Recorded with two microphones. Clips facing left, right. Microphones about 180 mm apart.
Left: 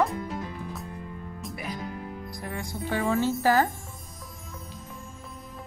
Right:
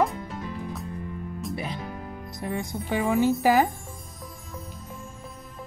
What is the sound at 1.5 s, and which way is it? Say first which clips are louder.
A woman's voice: even; 30° right (ahead or behind).